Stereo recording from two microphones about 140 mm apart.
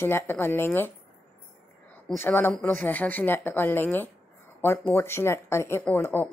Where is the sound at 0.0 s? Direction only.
15° left (ahead or behind).